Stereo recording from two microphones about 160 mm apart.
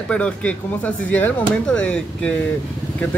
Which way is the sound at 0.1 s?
5° left (ahead or behind).